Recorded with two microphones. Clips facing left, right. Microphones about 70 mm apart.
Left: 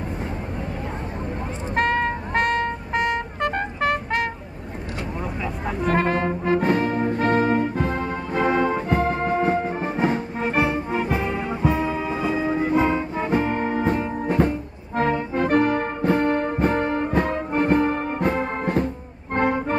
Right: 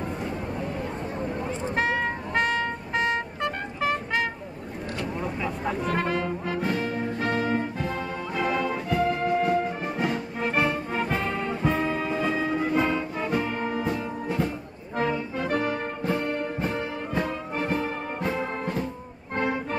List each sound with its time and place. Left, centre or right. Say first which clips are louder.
1.8 s music: left 6 dB; left
5.2 s vehicle: left 1 dB; centre
5.9 s brass instrument: left 8 dB; left
10.4 s music: left 2 dB; left
15.0 s brass instrument: left 5 dB; left
19.3 s music: left 6 dB; left